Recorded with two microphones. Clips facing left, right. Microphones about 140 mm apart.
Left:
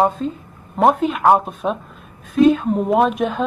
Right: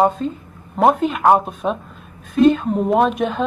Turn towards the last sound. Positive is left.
turn(degrees=0)  # may be behind; listen again after turning